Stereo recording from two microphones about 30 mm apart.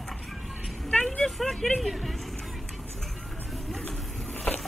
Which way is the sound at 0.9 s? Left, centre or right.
Left.